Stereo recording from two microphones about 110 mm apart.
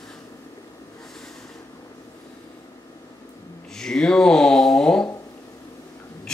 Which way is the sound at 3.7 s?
5° left (ahead or behind).